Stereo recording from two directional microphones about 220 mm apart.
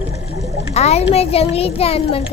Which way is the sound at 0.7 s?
30° left (ahead or behind).